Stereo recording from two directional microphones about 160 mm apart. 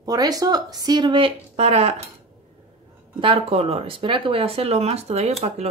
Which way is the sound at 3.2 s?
35° right (ahead or behind).